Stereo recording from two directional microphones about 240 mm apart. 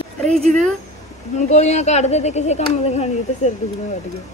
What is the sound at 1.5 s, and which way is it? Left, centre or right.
Speech, left.